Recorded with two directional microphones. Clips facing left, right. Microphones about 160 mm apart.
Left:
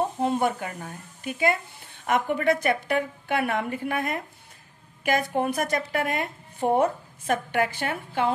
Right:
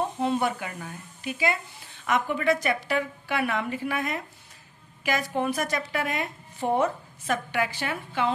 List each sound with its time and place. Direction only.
0.2 s speech: 45° left (ahead or behind)